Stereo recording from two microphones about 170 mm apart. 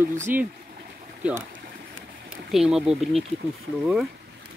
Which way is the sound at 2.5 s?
5° right (ahead or behind).